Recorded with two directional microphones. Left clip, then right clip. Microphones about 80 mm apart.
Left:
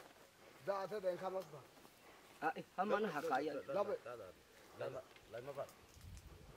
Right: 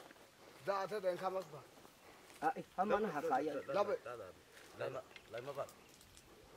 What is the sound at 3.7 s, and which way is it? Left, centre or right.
Speech, right.